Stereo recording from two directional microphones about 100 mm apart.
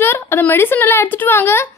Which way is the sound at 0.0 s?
25° left (ahead or behind).